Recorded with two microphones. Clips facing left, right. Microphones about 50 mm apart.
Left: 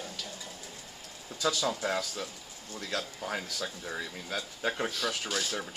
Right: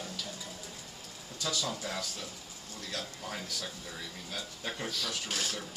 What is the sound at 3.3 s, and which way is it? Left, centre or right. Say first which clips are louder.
Speech: left 5 dB; left.